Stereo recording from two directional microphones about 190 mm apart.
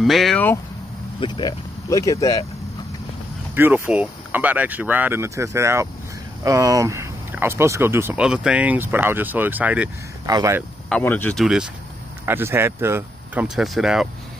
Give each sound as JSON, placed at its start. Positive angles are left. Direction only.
{"t": 0.0, "sound": "speech", "side_deg": 0}
{"t": 1.2, "sound": "speech", "side_deg": 25}
{"t": 3.5, "sound": "speech", "side_deg": -10}
{"t": 10.9, "sound": "speech", "side_deg": 10}
{"t": 12.3, "sound": "speech", "side_deg": -10}